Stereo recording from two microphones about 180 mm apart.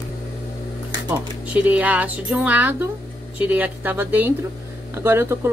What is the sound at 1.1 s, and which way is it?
Speech, 5° right (ahead or behind).